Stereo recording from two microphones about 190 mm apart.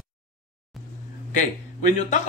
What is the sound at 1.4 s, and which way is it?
Speech, 45° left (ahead or behind).